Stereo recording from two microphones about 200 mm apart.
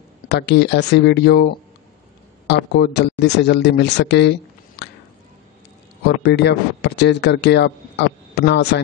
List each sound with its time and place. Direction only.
0.3 s a man's voice: 60° left (ahead or behind)
6.2 s a man's voice: 55° left (ahead or behind)